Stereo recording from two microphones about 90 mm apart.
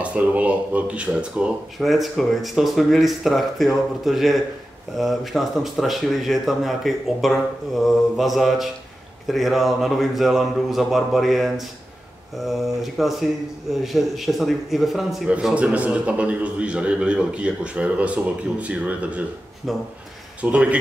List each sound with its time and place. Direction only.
0.0 s a man's voice: 15° right (ahead or behind)
1.8 s speech: centre (ahead or behind)
15.5 s a man's voice: 15° right (ahead or behind)
19.6 s speech: centre (ahead or behind)
20.4 s a man's voice: 15° right (ahead or behind)